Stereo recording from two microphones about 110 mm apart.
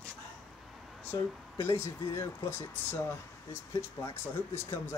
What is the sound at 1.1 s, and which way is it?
Speech, 25° left (ahead or behind).